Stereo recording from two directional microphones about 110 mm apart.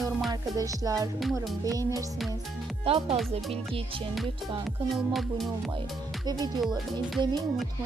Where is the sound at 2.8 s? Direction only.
55° right (ahead or behind).